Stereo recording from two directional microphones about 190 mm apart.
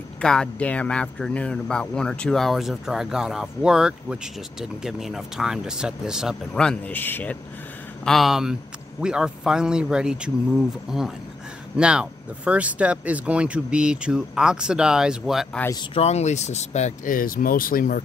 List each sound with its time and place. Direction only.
0.2 s speech: 5° left (ahead or behind)
15.9 s speech: 35° left (ahead or behind)